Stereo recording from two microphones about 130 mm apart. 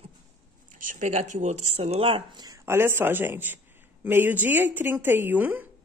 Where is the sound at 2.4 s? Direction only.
25° right (ahead or behind).